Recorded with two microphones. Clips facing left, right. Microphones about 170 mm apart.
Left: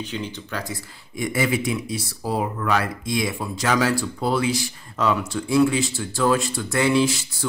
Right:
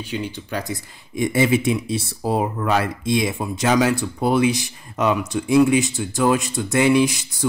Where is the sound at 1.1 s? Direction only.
25° right (ahead or behind).